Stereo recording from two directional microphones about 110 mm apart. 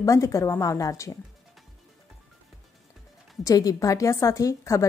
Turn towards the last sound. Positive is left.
turn(degrees=25)  # may be behind; listen again after turning